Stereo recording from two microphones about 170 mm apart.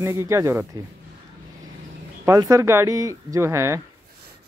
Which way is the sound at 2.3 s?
15° right (ahead or behind).